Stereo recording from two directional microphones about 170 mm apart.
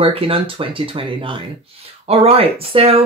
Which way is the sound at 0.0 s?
30° right (ahead or behind).